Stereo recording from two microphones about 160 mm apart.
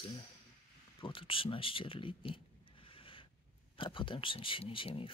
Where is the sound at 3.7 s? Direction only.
30° left (ahead or behind).